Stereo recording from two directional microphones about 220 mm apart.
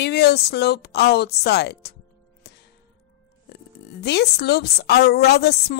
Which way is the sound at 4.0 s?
50° left (ahead or behind).